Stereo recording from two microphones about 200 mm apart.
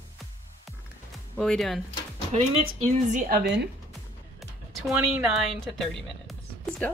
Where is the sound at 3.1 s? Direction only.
50° right (ahead or behind).